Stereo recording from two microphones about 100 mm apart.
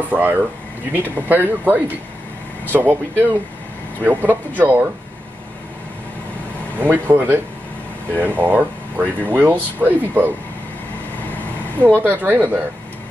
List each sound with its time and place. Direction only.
0.1 s speech: 20° right (ahead or behind)
6.8 s speech: 20° right (ahead or behind)
12.0 s speech: 20° right (ahead or behind)